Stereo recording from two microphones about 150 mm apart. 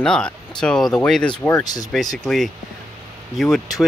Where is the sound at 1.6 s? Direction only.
25° left (ahead or behind).